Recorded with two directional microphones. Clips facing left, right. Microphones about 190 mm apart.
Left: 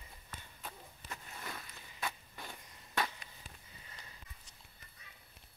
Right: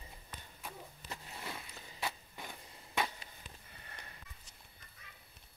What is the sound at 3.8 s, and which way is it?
Sniff, 60° right (ahead or behind).